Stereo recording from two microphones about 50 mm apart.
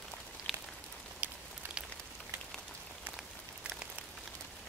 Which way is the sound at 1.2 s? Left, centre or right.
Right.